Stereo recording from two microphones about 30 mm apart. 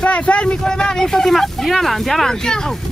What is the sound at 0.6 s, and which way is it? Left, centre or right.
Speech, left.